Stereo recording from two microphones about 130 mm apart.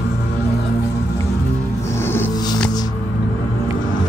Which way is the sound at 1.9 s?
15° left (ahead or behind).